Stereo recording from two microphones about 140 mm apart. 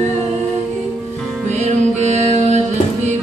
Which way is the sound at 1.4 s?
55° right (ahead or behind).